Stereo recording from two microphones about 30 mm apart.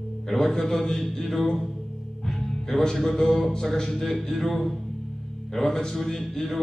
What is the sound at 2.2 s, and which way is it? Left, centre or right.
Music, centre.